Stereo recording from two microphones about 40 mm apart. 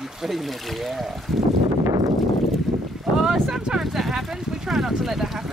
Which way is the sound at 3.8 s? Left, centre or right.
Centre.